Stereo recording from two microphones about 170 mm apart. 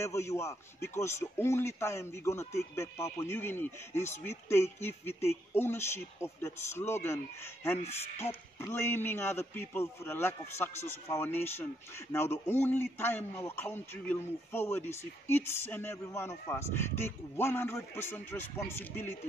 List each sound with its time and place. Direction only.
0.0 s a man's voice: 15° left (ahead or behind)